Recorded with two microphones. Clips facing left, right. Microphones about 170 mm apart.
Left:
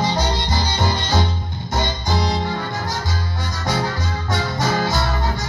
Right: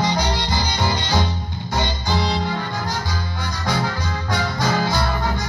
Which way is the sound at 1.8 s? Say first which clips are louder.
Left 1 dB; 20° left (ahead or behind).